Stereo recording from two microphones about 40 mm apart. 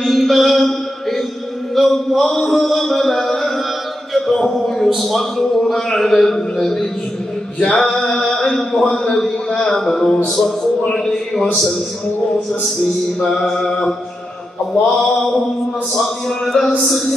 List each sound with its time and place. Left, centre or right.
0.0 s mantra: centre
2.5 s music: centre
4.3 s a sound: centre
4.8 s a man's voice: centre
7.6 s male singing: centre
8.1 s mantra: centre
8.5 s a man's voice: centre
13.2 s a man's voice: centre
15.0 s a man's voice: centre